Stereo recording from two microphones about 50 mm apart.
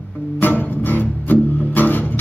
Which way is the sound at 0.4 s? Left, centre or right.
Left.